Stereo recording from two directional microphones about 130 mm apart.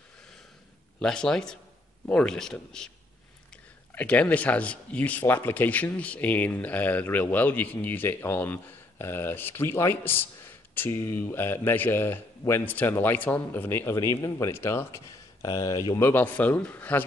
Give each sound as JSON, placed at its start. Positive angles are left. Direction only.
{"t": 0.9, "sound": "a man's voice", "side_deg": 5}
{"t": 3.9, "sound": "speech", "side_deg": 10}